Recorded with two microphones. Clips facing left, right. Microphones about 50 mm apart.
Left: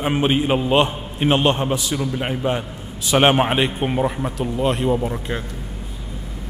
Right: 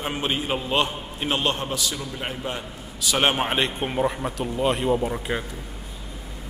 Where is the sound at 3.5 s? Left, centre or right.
Centre.